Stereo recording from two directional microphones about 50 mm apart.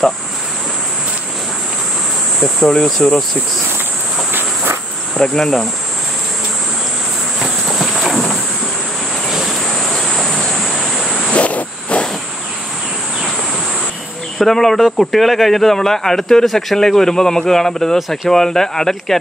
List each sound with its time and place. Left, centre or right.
2.7 s speech: centre
4.3 s insect: right
5.2 s speech: centre
7.3 s a sound: centre
11.2 s a sound: left
14.4 s speech: centre